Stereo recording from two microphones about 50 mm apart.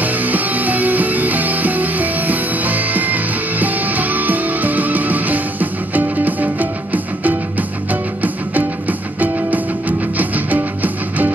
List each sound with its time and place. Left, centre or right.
0.0 s music: right